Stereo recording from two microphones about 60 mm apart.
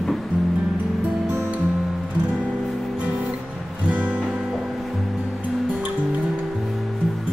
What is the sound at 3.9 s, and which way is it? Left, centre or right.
Music, right.